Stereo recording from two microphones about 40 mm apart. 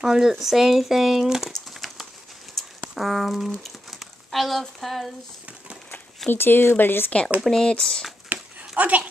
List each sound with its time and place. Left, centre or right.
0.0 s speech: centre
1.7 s a sound: centre
3.0 s speech: centre
6.3 s speech: left
7.5 s speech: centre
8.3 s a sound: right
8.7 s speech: right